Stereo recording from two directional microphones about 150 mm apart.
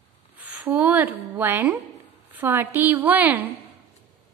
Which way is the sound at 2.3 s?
15° right (ahead or behind).